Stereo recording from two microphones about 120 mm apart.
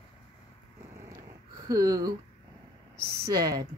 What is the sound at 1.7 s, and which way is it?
Speech, 30° right (ahead or behind).